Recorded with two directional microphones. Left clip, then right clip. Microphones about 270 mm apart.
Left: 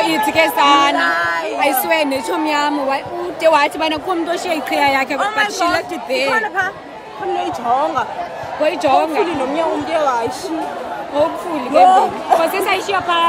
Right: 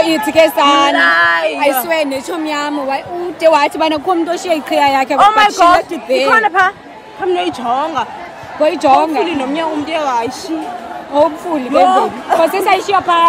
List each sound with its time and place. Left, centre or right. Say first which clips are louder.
0.0 s a woman's voice: right 4 dB; centre
0.9 s a sound: right 6 dB; right
1.6 s a woman's voice: right 2 dB; centre
6.4 s a woman's voice: right 7 dB; right
8.6 s speech: right 4 dB; centre
9.3 s a sound: right 1 dB; right
11.1 s speech: right 5 dB; centre
11.7 s speech: left 1 dB; right
12.4 s speech: right 4 dB; centre